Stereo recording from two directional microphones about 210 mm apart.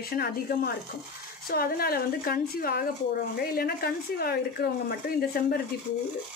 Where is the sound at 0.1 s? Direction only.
45° left (ahead or behind).